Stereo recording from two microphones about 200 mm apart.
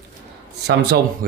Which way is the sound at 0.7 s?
55° right (ahead or behind).